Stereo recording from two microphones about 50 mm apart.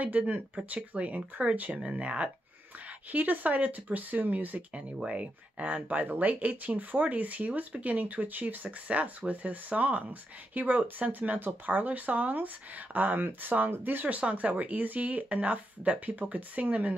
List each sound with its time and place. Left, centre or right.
0.2 s speech: right
3.1 s speech: right
8.6 s speech: right